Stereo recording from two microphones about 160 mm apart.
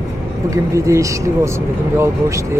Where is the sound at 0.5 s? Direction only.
20° right (ahead or behind).